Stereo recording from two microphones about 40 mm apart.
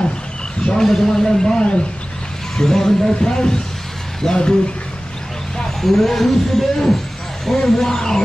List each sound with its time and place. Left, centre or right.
0.8 s speech: centre
5.6 s speech: centre